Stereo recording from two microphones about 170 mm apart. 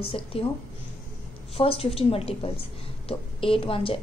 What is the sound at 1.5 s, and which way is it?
A woman's voice, 35° left (ahead or behind).